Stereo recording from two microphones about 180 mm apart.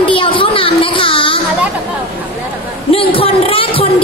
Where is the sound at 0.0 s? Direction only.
30° left (ahead or behind).